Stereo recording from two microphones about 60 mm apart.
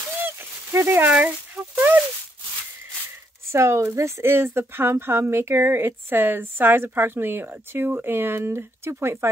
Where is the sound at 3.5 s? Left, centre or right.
Right.